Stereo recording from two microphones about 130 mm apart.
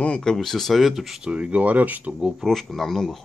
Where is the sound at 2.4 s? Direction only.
Centre (ahead or behind).